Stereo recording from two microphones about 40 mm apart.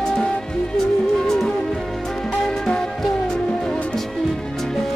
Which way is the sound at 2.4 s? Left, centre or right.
Centre.